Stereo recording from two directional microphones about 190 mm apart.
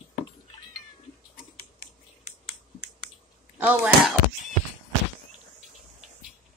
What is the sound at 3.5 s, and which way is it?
Speech, 10° right (ahead or behind).